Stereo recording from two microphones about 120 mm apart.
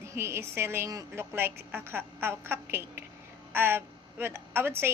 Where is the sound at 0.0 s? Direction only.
20° right (ahead or behind).